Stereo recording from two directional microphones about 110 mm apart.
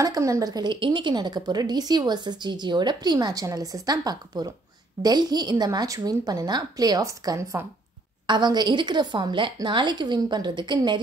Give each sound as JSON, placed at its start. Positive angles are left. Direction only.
{"t": 0.0, "sound": "a woman's voice", "side_deg": -30}
{"t": 8.3, "sound": "a woman's voice", "side_deg": -40}